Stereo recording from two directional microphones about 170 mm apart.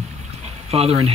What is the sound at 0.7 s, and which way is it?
Speech, 35° right (ahead or behind).